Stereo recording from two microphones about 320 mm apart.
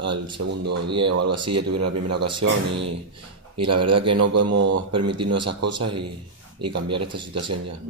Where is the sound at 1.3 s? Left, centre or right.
Centre.